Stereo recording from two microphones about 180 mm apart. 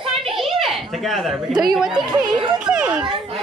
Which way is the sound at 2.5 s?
5° right (ahead or behind).